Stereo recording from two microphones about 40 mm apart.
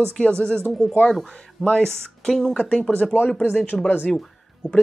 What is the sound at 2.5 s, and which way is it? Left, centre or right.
Speech, left.